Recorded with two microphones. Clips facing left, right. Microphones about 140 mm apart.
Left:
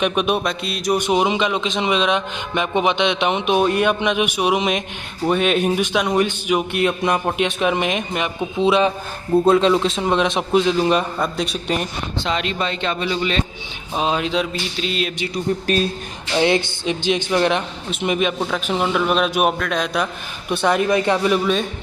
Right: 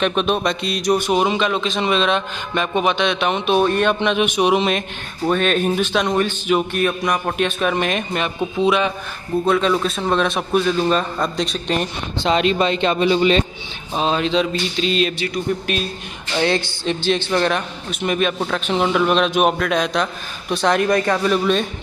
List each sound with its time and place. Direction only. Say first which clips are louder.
0.0 s a man's voice: right 1 dB; 10° left (ahead or behind)
0.9 s a man's voice: left 1 dB; 15° left (ahead or behind)
8.6 s a man's voice: left 3 dB; 30° left (ahead or behind); by 12.3 s 10° left (ahead or behind)
12.3 s speech: right 7 dB; 30° right (ahead or behind)
12.6 s speech: right 6 dB; 20° right (ahead or behind)
13.9 s a man's voice: right 2 dB; 10° left (ahead or behind)
15.3 s speech: left 2 dB; 35° left (ahead or behind)
16.3 s a man's voice: left 2 dB; 20° left (ahead or behind)
18.4 s a man's voice: right 1 dB; 5° left (ahead or behind)